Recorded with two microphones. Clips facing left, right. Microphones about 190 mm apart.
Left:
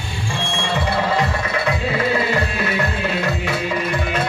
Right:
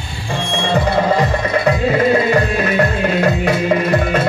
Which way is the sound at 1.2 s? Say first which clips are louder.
Right 5 dB; 45° right (ahead or behind).